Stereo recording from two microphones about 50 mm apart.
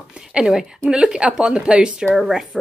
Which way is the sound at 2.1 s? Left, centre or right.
Centre.